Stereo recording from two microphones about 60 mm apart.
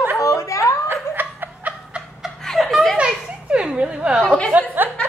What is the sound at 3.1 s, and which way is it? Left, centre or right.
Children playing, centre.